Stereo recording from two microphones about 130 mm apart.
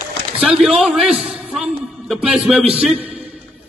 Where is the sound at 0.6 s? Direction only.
5° right (ahead or behind).